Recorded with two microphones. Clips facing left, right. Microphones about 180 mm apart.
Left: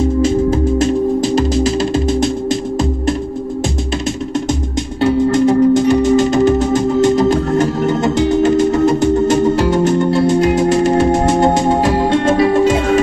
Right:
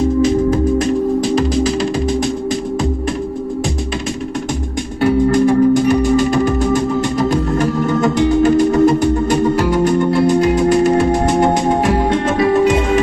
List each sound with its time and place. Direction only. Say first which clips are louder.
0.2 s music: even; 25° left (ahead or behind)
5.0 s music: even; 25° left (ahead or behind)